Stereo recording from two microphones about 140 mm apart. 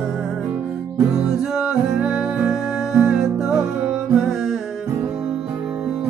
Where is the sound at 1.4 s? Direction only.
5° right (ahead or behind).